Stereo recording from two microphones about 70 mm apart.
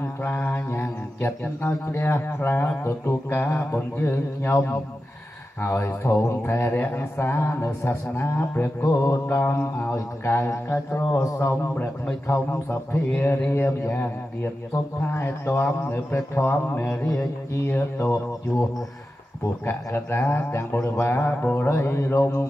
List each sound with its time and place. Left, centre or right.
0.0 s mantra: left
1.6 s speech: left
8.8 s mantra: left
9.3 s speech: left
13.1 s a sound: left
13.5 s speech: left
21.3 s a sound: left
21.6 s speech: left